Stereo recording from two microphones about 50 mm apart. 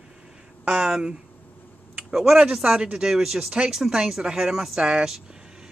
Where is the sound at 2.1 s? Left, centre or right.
Centre.